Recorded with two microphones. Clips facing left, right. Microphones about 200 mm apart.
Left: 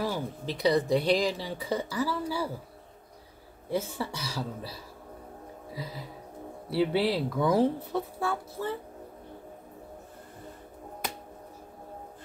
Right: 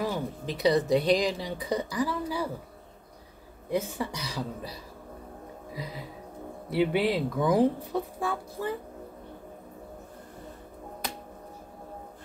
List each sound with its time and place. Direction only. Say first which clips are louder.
0.0 s speech: right 1 dB; 15° right (ahead or behind)
3.7 s speech: right 1 dB; 15° right (ahead or behind)
6.7 s speech: right 1 dB; 15° right (ahead or behind)